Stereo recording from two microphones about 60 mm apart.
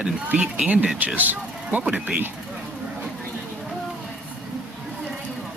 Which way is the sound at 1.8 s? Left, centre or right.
Centre.